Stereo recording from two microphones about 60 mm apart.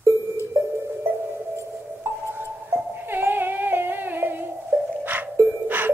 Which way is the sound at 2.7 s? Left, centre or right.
Right.